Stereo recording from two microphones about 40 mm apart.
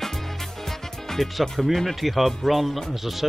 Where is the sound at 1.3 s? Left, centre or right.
Centre.